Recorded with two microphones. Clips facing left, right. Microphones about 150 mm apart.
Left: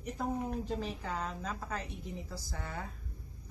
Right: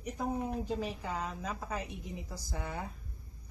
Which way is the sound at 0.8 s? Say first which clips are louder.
Right 1 dB; 10° right (ahead or behind).